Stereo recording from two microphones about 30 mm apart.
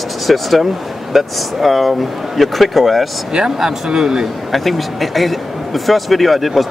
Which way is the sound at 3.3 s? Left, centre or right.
Right.